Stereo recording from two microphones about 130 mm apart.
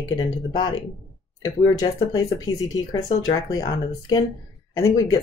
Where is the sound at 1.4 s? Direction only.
25° left (ahead or behind).